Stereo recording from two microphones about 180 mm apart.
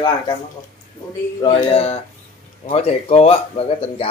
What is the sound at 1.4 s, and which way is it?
Speech, 30° left (ahead or behind).